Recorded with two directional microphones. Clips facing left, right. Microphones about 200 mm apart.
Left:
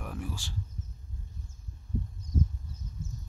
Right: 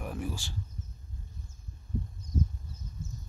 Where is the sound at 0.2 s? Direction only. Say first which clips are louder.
Right 2 dB; 5° right (ahead or behind).